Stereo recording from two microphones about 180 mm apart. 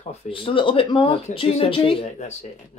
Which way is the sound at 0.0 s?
35° left (ahead or behind).